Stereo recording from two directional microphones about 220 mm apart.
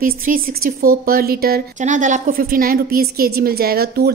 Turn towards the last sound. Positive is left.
turn(degrees=-45)  # may be behind; listen again after turning